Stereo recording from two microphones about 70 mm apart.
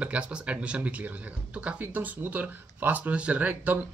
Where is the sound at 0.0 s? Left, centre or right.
Centre.